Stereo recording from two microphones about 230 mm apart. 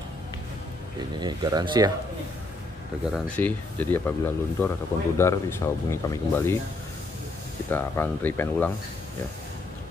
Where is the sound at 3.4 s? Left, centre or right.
Centre.